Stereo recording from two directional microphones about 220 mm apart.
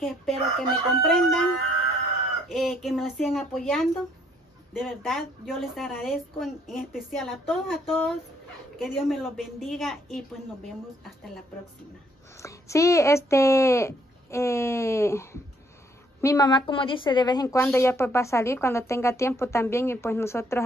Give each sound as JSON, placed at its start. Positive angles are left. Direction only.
{"t": 0.0, "sound": "a woman's voice", "side_deg": 0}
{"t": 2.5, "sound": "a woman's voice", "side_deg": 0}
{"t": 12.4, "sound": "a woman's voice", "side_deg": 15}